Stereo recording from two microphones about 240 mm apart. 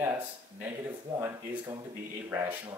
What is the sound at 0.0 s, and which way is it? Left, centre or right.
Speech, centre.